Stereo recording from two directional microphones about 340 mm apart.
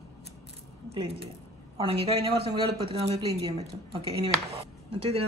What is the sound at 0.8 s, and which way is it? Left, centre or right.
Speech, centre.